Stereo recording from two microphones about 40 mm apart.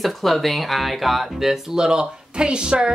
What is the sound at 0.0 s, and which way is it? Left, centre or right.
Speech, centre.